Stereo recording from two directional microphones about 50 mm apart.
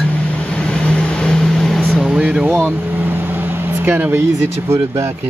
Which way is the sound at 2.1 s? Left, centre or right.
Right.